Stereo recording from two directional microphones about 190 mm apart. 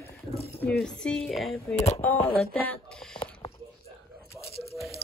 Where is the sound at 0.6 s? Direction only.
5° left (ahead or behind).